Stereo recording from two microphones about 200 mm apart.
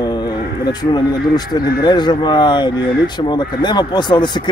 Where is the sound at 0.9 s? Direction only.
20° left (ahead or behind).